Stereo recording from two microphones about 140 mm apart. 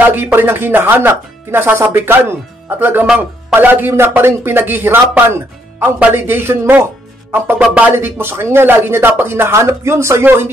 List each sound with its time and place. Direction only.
0.0 s speech: 15° right (ahead or behind)